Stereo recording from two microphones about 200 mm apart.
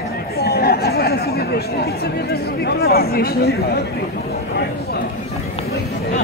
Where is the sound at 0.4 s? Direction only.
50° left (ahead or behind).